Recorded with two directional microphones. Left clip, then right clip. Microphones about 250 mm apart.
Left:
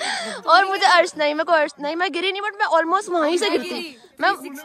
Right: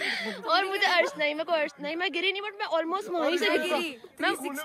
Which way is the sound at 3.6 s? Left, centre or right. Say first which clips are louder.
Right 1 dB; centre.